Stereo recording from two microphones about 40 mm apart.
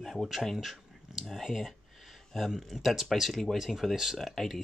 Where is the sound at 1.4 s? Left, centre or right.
Centre.